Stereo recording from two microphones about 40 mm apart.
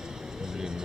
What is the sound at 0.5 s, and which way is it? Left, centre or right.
Music, centre.